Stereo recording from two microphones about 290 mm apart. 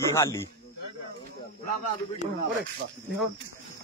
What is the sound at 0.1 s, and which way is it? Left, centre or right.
Speech, centre.